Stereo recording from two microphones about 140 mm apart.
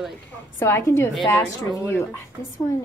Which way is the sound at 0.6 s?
20° left (ahead or behind).